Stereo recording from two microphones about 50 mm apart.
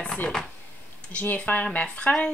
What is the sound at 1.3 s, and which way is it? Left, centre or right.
Speech, left.